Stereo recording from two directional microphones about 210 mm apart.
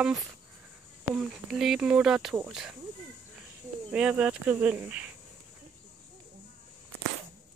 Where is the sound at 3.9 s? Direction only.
5° right (ahead or behind).